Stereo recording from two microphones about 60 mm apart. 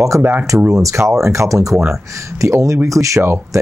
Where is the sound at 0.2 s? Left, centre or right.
Right.